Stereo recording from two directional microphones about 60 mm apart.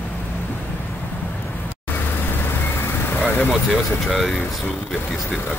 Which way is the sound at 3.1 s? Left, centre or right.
Left.